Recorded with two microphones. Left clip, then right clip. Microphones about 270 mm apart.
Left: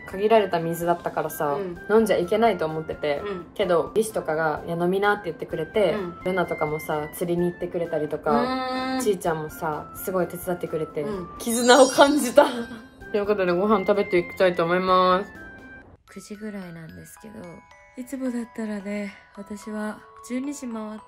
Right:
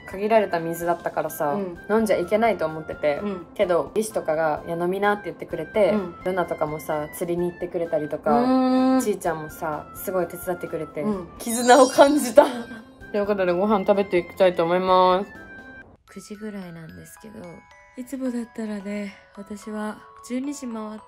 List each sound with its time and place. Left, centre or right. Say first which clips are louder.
0.1 s a woman's voice: left 1 dB; centre
8.5 s a sound: right 6 dB; right
9.0 s a woman's voice: left 1 dB; centre
16.3 s a woman's voice: right 1 dB; centre
17.9 s a woman's voice: right 1 dB; centre